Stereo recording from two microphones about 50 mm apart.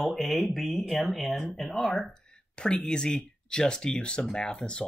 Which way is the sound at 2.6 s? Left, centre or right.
Centre.